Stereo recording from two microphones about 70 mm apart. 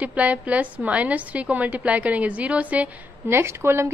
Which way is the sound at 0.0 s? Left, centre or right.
Right.